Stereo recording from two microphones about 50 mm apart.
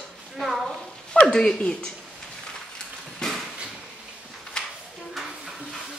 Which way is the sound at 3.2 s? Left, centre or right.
Centre.